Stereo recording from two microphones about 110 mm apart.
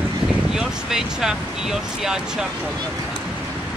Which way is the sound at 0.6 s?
5° right (ahead or behind).